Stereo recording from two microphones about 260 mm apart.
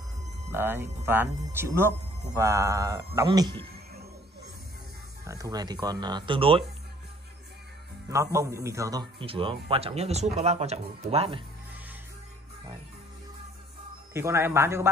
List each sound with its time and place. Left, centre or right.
0.5 s speech: centre
5.2 s speech: centre
8.1 s a man's voice: centre
14.1 s speech: centre